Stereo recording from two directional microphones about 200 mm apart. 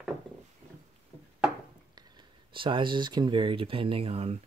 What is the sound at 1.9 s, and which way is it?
Speech, 20° right (ahead or behind).